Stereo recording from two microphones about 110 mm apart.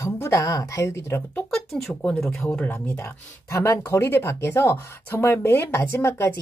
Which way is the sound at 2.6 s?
15° left (ahead or behind).